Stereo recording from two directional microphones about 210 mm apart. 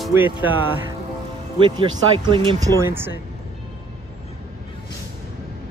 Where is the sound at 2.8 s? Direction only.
10° right (ahead or behind).